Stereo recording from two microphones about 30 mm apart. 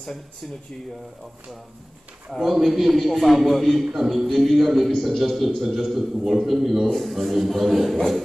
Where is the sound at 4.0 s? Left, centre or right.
Centre.